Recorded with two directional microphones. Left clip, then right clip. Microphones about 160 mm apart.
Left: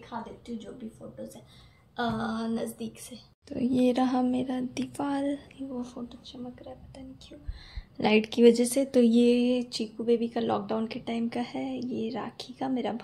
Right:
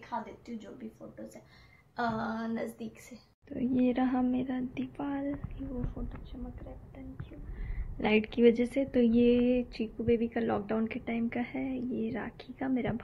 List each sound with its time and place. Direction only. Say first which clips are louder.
2.0 s speech: left 2 dB; 20° left (ahead or behind)
6.0 s speech: left 4 dB; 10° left (ahead or behind)
8.0 s speech: left 4 dB; 20° left (ahead or behind)